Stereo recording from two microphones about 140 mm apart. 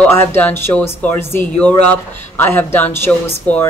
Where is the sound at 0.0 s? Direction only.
10° left (ahead or behind).